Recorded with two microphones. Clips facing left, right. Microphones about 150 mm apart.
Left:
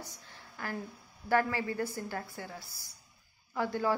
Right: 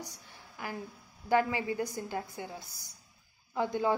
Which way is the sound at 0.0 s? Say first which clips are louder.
Right 2 dB; 15° right (ahead or behind).